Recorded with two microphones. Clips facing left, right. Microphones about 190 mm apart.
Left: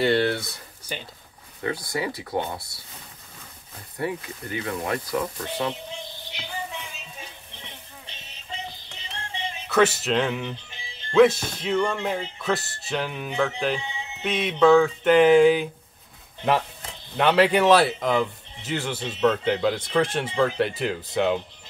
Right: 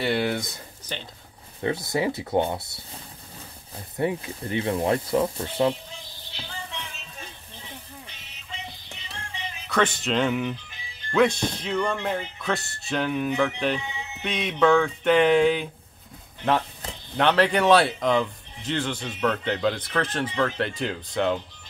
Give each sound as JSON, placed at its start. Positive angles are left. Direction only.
{"t": 0.1, "sound": "speech", "side_deg": -15}
{"t": 0.9, "sound": "speech", "side_deg": 10}
{"t": 1.6, "sound": "speech", "side_deg": -25}
{"t": 3.9, "sound": "speech", "side_deg": -25}
{"t": 6.3, "sound": "music", "side_deg": 15}
{"t": 8.1, "sound": "music", "side_deg": 35}
{"t": 9.7, "sound": "speech", "side_deg": 5}
{"t": 10.5, "sound": "music", "side_deg": 30}
{"t": 11.1, "sound": "speech", "side_deg": 5}
{"t": 13.7, "sound": "speech", "side_deg": 25}
{"t": 14.2, "sound": "speech", "side_deg": 0}
{"t": 17.2, "sound": "speech", "side_deg": 5}